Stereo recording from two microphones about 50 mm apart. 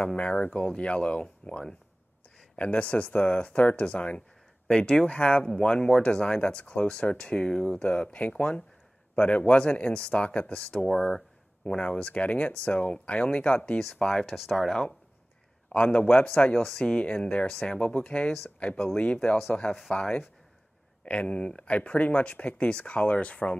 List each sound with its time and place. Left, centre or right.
0.0 s speech: left
4.6 s speech: centre
11.6 s speech: left
13.9 s speech: centre
14.2 s speech: centre
14.7 s speech: centre
15.7 s speech: left
16.5 s speech: centre
17.0 s speech: left
21.0 s speech: left